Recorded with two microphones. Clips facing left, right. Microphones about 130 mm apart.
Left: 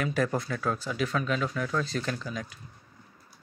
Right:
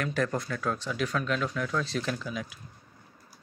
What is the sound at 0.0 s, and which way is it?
Speech, 5° left (ahead or behind).